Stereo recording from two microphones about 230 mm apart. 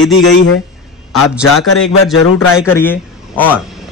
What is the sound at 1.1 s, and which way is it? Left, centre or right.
Speech, centre.